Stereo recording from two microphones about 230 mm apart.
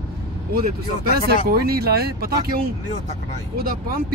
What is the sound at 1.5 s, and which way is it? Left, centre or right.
Speech, right.